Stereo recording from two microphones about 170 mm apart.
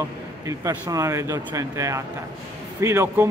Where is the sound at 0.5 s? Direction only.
20° right (ahead or behind).